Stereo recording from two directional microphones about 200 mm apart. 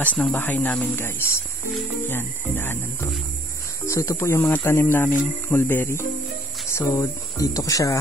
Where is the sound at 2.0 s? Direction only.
10° left (ahead or behind).